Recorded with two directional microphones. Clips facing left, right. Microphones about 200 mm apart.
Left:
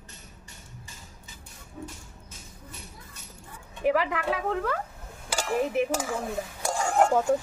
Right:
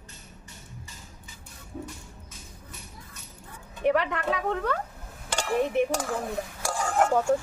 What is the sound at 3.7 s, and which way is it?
Speech, centre (ahead or behind).